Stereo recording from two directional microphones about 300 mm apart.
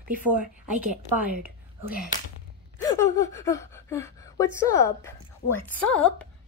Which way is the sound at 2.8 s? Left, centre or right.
Centre.